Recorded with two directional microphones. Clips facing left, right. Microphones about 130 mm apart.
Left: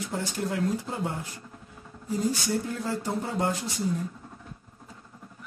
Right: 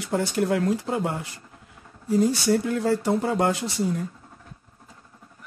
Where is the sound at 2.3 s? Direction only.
75° right (ahead or behind).